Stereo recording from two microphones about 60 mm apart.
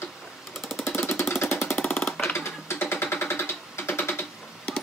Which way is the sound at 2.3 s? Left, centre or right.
Left.